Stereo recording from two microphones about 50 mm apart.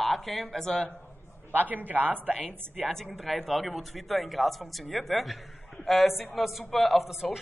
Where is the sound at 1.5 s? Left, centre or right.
Right.